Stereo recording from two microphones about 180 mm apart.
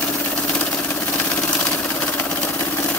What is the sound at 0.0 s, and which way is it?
Engine, 10° left (ahead or behind).